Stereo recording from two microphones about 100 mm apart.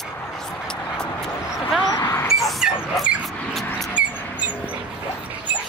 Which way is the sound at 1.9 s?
35° left (ahead or behind).